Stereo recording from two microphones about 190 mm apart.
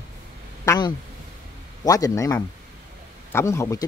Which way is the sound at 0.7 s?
20° left (ahead or behind).